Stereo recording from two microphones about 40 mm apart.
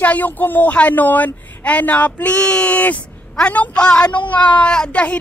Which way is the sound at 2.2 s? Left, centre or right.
Left.